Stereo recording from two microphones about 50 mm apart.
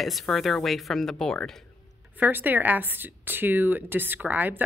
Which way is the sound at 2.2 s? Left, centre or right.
Right.